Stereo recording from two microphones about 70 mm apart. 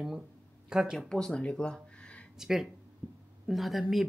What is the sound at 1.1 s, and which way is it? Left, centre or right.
Speech, centre.